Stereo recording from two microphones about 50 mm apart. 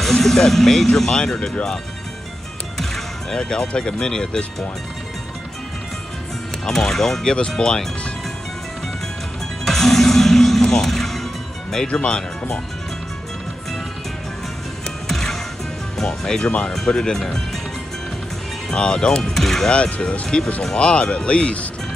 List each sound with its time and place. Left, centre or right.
0.0 s speech: centre
2.8 s speech: centre
6.6 s speech: centre
9.7 s music: centre
11.9 s speech: left
15.0 s music: centre
16.0 s speech: centre
18.7 s speech: centre
19.7 s speech: centre